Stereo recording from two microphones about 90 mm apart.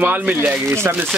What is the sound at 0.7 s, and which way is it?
Speech, 30° right (ahead or behind).